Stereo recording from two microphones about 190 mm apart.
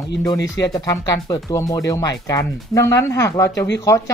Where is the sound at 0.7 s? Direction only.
20° left (ahead or behind).